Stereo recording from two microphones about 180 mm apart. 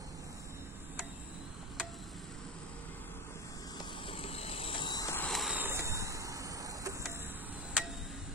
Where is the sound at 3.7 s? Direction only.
30° left (ahead or behind); by 5.3 s 15° left (ahead or behind).